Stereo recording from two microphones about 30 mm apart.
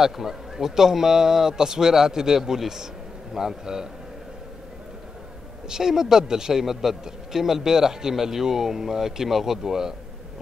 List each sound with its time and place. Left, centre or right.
0.0 s a man's voice: centre
5.7 s speech: centre
6.6 s a man's voice: centre